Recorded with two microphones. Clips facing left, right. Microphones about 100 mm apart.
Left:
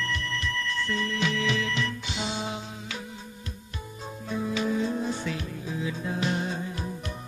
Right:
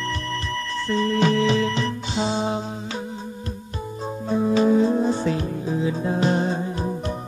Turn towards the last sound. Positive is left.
turn(degrees=-35)  # may be behind; listen again after turning